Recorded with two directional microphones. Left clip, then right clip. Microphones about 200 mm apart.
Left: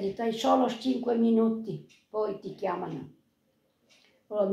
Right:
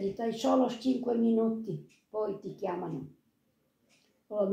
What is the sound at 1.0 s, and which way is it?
Speech, 5° right (ahead or behind).